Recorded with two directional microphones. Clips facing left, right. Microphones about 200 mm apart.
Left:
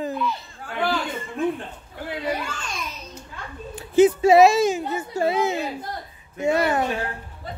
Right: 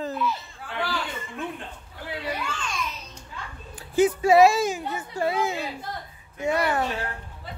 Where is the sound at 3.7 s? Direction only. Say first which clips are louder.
Left 5 dB; 25° left (ahead or behind).